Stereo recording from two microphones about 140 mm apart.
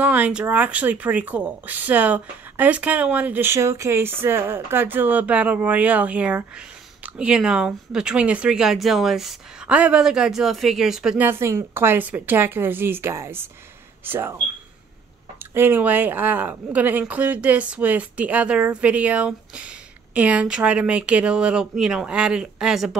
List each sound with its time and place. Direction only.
0.0 s speech: 10° right (ahead or behind)
11.2 s speech: 15° right (ahead or behind)
15.5 s speech: 15° right (ahead or behind)